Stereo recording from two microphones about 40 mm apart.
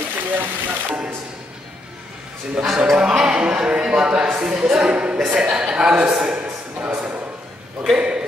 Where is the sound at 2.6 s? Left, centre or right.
Centre.